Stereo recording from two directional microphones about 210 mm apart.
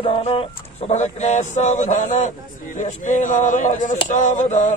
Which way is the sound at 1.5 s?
35° left (ahead or behind).